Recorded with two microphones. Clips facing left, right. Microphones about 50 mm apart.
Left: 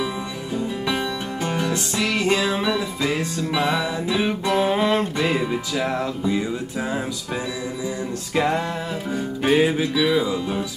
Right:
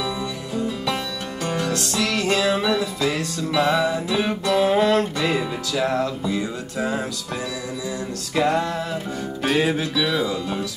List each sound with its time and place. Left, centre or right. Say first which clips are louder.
1.4 s music: right 1 dB; centre
3.7 s music: right 2 dB; centre
4.5 s music: right 3 dB; left
8.4 s music: right 1 dB; centre